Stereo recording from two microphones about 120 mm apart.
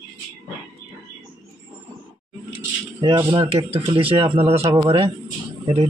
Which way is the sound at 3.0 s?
35° right (ahead or behind).